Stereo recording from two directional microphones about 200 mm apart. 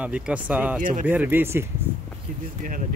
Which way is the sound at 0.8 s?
40° right (ahead or behind).